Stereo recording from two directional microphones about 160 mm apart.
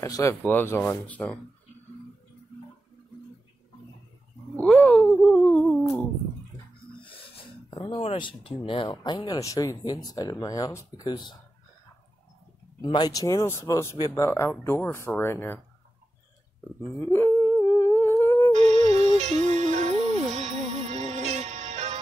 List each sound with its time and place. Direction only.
0.0 s speech: 20° left (ahead or behind)
4.6 s a sound: 10° left (ahead or behind)
7.0 s speech: 35° left (ahead or behind)
12.8 s speech: 25° left (ahead or behind)
17.0 s humming: 15° left (ahead or behind)
18.5 s music: 45° right (ahead or behind)